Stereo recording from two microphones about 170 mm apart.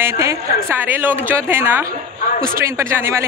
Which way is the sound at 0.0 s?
15° right (ahead or behind).